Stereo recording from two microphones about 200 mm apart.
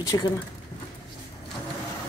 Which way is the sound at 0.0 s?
20° left (ahead or behind).